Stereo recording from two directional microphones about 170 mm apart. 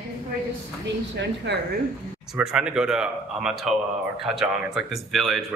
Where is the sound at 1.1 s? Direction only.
90° right.